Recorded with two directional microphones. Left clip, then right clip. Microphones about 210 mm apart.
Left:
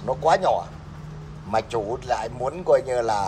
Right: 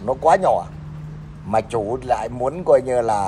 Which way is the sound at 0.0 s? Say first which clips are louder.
Right 4 dB; 5° left (ahead or behind).